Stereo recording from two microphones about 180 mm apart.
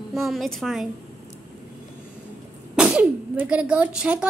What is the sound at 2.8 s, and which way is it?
Speech, 5° right (ahead or behind).